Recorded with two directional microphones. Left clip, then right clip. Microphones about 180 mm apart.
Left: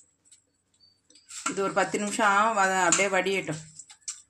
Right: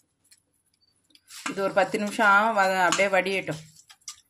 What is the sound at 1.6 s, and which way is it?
Speech, 35° right (ahead or behind).